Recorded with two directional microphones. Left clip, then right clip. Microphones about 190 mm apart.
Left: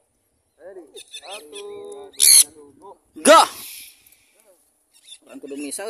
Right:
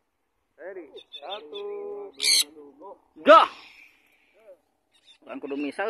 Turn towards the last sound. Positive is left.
turn(degrees=15)  # may be behind; listen again after turning